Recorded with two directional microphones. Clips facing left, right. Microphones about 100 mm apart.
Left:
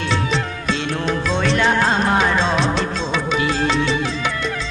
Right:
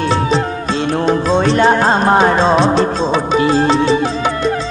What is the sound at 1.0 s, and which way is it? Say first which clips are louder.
Music: right 7 dB; 35° right (ahead or behind).